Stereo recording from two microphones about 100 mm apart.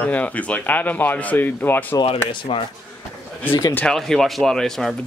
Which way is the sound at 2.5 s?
65° left (ahead or behind).